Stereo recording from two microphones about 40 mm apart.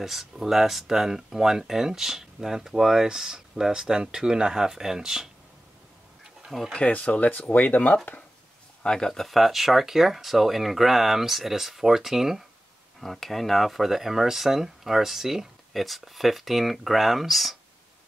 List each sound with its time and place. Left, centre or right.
0.0 s speech: centre
6.8 s speech: left
8.8 s speech: centre
9.3 s speech: centre
13.0 s speech: centre